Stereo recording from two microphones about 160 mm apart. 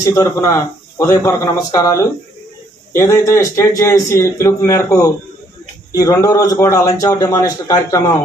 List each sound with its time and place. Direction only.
0.0 s a man's voice: 20° left (ahead or behind)